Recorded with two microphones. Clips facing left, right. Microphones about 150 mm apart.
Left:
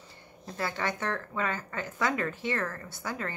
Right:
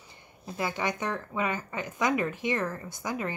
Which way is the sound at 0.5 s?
15° right (ahead or behind).